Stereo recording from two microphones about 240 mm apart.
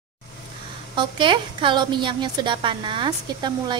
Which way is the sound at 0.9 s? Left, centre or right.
Centre.